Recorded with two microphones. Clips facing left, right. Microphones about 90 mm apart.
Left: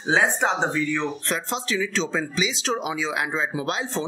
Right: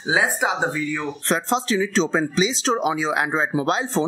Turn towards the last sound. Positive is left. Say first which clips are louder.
# right 6 dB
turn(degrees=-35)  # may be behind; listen again after turning